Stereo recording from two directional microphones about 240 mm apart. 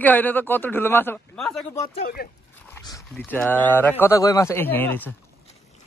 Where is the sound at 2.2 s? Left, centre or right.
Left.